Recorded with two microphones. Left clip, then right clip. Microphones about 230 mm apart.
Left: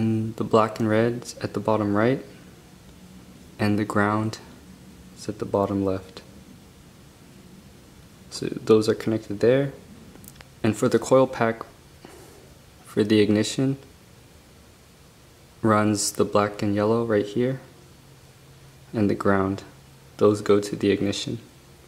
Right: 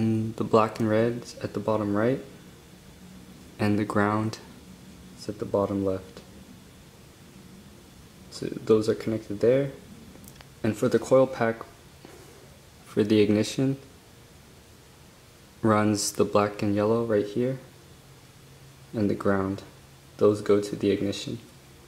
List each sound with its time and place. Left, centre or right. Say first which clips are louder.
0.0 s speech: left 1 dB; centre
3.5 s speech: left 2 dB; centre
8.3 s speech: left 3 dB; centre
12.9 s speech: left 2 dB; centre
15.6 s speech: left 2 dB; centre
18.9 s speech: left 4 dB; centre